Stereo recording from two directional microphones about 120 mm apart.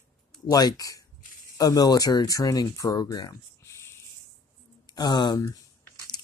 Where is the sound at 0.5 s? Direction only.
35° left (ahead or behind).